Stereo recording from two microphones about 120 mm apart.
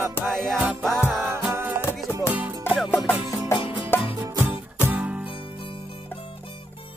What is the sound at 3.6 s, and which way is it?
Music, 45° left (ahead or behind).